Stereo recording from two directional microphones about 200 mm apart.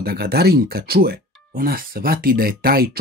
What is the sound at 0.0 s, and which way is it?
Speech, 50° right (ahead or behind).